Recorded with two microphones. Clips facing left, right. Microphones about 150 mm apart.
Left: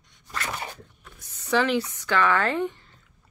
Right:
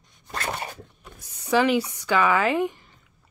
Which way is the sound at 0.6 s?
10° right (ahead or behind).